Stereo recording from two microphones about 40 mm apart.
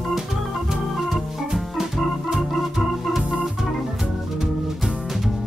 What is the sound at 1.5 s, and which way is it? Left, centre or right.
Organ, centre.